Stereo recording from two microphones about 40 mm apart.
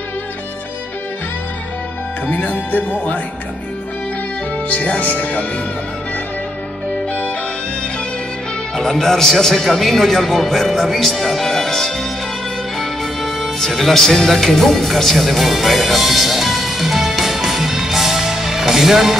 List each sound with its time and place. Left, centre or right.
2.2 s speech: left
4.6 s speech: left
8.7 s a man's voice: centre
12.7 s music: centre